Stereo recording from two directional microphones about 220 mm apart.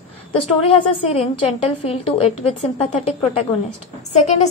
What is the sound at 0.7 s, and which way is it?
A woman's voice, 25° left (ahead or behind).